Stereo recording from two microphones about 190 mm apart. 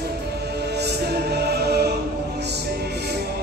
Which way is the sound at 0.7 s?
60° right (ahead or behind).